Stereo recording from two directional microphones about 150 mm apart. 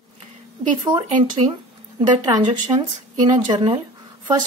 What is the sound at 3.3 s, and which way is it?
Speech, 30° right (ahead or behind).